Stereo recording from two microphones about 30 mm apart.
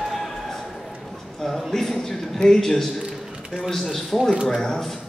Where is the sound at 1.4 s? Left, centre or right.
Centre.